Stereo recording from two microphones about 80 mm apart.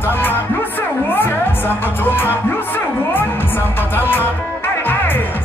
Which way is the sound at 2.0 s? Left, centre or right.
Left.